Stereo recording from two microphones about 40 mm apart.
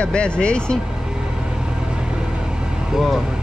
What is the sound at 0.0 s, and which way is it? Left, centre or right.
Speech, left.